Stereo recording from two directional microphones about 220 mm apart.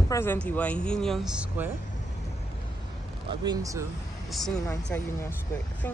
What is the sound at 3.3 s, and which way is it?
Speech, 15° right (ahead or behind).